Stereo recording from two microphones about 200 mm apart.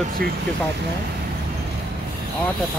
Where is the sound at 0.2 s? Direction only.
50° right (ahead or behind).